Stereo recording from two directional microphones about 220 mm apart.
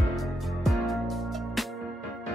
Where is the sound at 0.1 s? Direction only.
Centre (ahead or behind).